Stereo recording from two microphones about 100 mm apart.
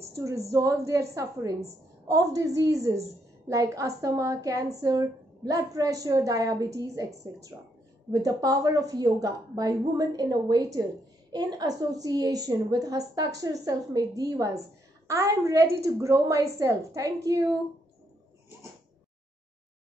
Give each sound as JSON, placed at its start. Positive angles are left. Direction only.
{"t": 0.1, "sound": "a woman's voice", "side_deg": -30}